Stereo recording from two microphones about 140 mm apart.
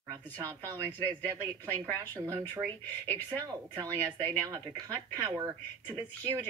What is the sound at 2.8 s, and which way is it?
Speech, 15° left (ahead or behind).